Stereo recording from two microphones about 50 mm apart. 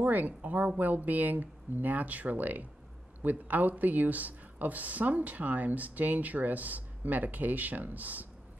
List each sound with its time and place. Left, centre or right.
0.0 s speech: right